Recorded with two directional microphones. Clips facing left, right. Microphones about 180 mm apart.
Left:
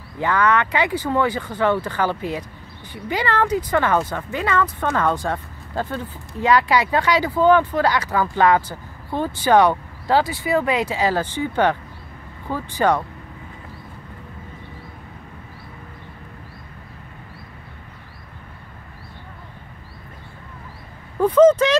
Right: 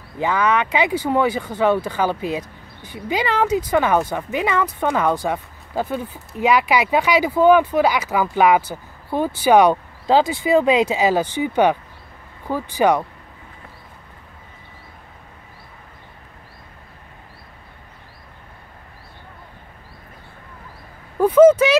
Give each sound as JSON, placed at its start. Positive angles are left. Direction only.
{"t": 0.2, "sound": "speech", "side_deg": -15}
{"t": 21.2, "sound": "vehicle", "side_deg": -10}